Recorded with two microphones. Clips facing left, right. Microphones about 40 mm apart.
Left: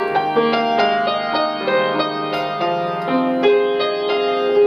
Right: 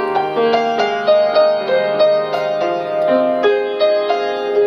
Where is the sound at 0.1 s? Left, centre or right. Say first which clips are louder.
Right 3 dB; centre.